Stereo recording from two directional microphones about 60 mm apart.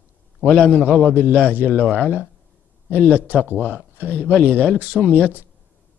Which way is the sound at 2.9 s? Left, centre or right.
Left.